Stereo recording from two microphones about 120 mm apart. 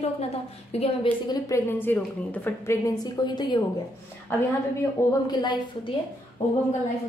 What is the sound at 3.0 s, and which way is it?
Speech, 35° left (ahead or behind).